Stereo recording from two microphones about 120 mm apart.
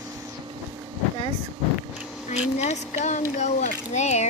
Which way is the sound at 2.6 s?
70° left (ahead or behind).